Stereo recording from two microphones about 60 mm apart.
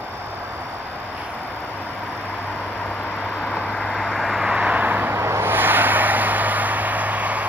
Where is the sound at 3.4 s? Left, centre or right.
Centre.